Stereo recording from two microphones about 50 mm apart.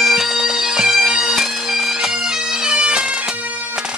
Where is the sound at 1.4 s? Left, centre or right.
Centre.